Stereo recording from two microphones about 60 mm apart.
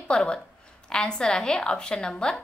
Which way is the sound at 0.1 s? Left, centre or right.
Centre.